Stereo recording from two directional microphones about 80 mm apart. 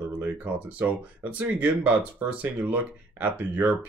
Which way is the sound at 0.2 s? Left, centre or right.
Right.